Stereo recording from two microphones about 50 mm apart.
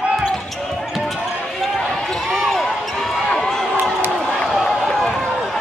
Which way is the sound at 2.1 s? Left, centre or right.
Centre.